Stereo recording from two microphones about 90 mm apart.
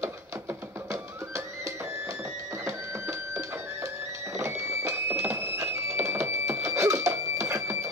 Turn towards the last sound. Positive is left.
turn(degrees=-30)  # may be behind; listen again after turning